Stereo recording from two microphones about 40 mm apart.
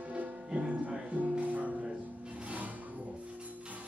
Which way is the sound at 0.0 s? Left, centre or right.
Right.